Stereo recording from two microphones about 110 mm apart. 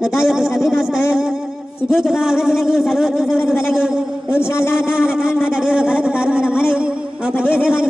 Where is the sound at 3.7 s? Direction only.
5° right (ahead or behind).